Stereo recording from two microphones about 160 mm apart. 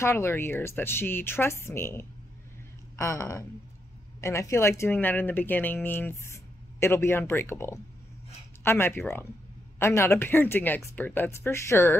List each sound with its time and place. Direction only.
0.0 s speech: 15° left (ahead or behind)